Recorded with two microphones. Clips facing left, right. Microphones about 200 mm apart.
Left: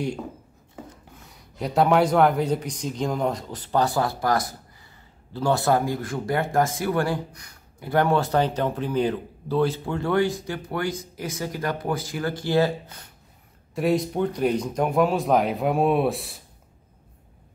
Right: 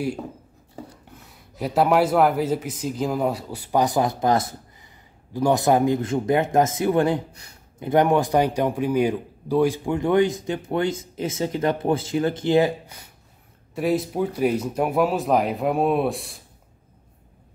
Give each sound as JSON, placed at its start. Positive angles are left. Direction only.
{"t": 1.1, "sound": "speech", "side_deg": 0}